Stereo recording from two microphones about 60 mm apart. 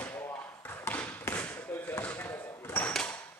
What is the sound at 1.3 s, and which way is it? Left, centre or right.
Basketball bounce, left.